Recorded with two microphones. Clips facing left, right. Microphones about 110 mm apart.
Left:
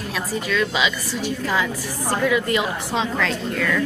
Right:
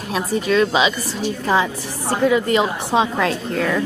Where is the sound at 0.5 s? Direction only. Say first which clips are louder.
Right 6 dB; 30° right (ahead or behind).